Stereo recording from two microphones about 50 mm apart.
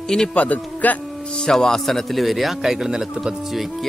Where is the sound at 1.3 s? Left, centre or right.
Centre.